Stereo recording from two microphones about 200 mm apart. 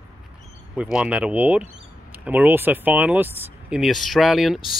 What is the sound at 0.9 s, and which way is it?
Speech, 5° right (ahead or behind).